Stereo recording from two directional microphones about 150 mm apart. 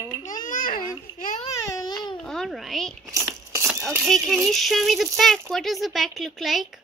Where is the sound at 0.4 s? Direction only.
65° left (ahead or behind).